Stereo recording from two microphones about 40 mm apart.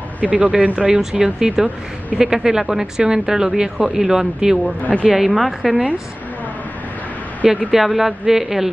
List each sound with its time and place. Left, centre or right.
0.2 s speech: right
0.7 s speech: right
7.7 s speech: centre